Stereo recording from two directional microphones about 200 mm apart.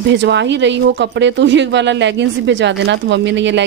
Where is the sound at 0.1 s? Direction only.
60° right (ahead or behind).